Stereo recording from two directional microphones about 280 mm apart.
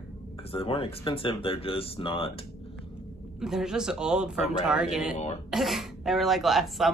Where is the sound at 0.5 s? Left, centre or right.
Centre.